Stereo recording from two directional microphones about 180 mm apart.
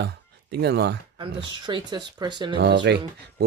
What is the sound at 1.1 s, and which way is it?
Speech, 25° right (ahead or behind).